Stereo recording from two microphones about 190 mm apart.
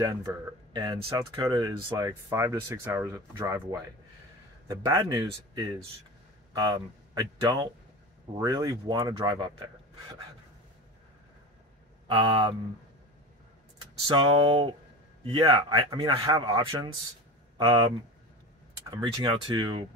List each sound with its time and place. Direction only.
0.0 s speech: 20° right (ahead or behind)
12.1 s speech: 25° right (ahead or behind)
14.0 s speech: 25° right (ahead or behind)
18.9 s speech: 20° right (ahead or behind)